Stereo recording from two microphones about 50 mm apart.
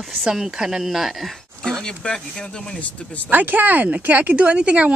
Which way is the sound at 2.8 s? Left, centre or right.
Left.